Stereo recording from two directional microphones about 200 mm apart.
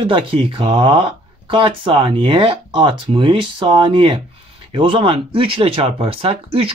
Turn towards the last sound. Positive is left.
turn(degrees=-30)  # may be behind; listen again after turning